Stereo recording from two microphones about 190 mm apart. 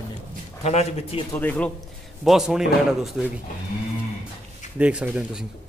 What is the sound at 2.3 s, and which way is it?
A man's voice, centre (ahead or behind).